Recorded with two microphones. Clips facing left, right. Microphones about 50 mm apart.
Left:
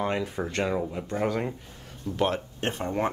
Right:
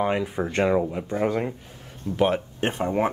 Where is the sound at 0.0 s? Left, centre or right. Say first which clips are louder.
Right 4 dB; centre.